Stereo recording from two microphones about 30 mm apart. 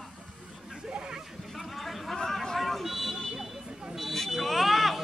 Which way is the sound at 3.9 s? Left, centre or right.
Centre.